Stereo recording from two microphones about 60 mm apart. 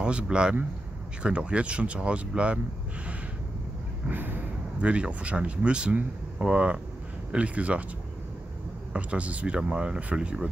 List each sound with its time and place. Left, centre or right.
0.0 s speech: centre
4.1 s a sound: right
4.8 s speech: right
8.9 s speech: right